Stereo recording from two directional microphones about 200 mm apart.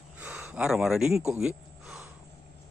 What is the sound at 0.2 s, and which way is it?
Speech, 10° right (ahead or behind).